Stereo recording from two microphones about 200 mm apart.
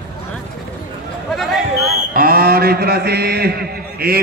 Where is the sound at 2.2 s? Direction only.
50° right (ahead or behind).